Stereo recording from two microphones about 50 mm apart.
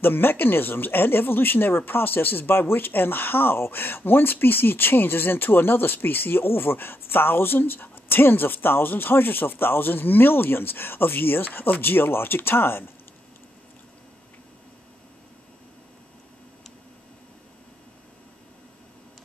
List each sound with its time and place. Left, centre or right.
0.0 s speech: left